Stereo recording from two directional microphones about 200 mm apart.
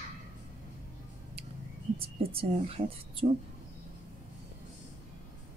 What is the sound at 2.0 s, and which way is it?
A woman's voice, 30° right (ahead or behind).